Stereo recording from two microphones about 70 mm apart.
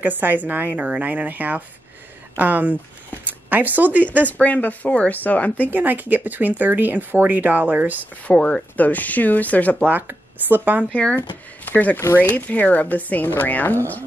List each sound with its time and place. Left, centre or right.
0.0 s speech: right
4.2 s speech: left
5.7 s speech: right
8.3 s speech: centre
9.8 s speech: right
10.9 s speech: centre